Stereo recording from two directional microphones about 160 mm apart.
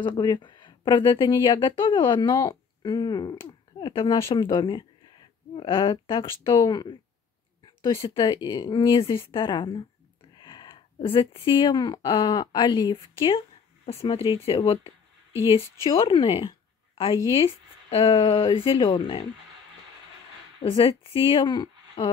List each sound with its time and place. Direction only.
0.0 s a woman's voice: 30° left (ahead or behind)
18.1 s speech: 30° left (ahead or behind)
20.7 s speech: 35° left (ahead or behind)